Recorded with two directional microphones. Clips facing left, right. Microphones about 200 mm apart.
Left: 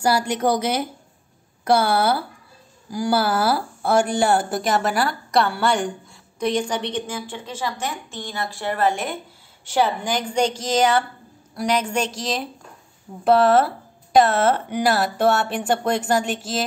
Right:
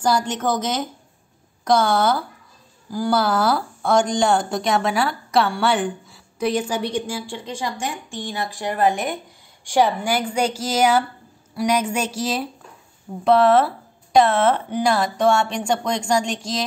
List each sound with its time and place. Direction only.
0.0 s a woman's voice: 10° left (ahead or behind)